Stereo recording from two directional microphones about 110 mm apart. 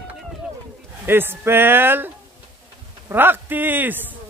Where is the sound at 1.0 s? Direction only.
20° right (ahead or behind).